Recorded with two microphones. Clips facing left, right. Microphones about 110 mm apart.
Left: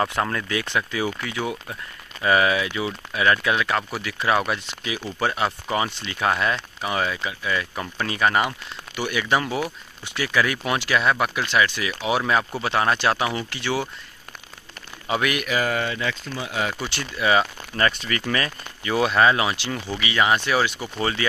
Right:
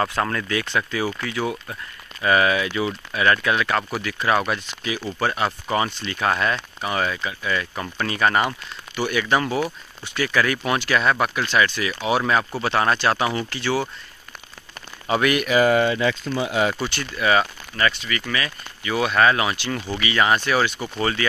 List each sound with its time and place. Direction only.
0.0 s speech: 10° left (ahead or behind)
8.5 s speech: 30° right (ahead or behind)
9.1 s speech: 10° left (ahead or behind)
15.2 s speech: 5° left (ahead or behind)
15.5 s speech: 20° right (ahead or behind)
16.9 s speech: 20° left (ahead or behind)
17.7 s speech: 40° left (ahead or behind); by 21.3 s 20° left (ahead or behind)